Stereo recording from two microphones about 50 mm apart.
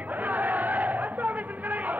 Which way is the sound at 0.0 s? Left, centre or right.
Right.